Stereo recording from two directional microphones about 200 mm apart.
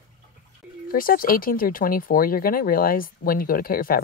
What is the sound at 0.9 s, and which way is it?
Speech, 45° left (ahead or behind).